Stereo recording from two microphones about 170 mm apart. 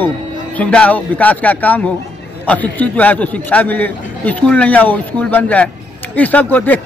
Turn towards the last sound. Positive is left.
turn(degrees=10)  # may be behind; listen again after turning